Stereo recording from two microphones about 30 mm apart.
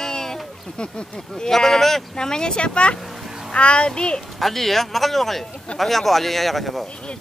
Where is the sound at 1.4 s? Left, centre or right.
Centre.